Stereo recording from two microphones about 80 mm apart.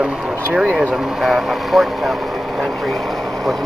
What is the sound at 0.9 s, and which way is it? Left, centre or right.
A man's voice, centre.